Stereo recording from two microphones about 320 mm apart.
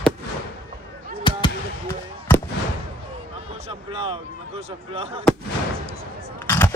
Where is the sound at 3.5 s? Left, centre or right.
Centre.